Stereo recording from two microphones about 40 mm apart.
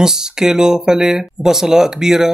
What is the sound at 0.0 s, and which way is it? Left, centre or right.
Speech, centre.